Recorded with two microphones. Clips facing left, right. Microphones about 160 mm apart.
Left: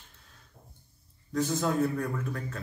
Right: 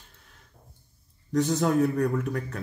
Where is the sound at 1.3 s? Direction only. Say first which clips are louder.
Right 5 dB; 70° right (ahead or behind).